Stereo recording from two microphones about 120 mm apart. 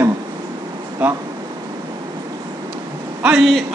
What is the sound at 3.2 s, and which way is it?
Speech, 5° right (ahead or behind).